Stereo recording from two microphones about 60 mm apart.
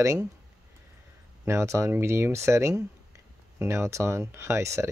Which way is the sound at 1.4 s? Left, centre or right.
Right.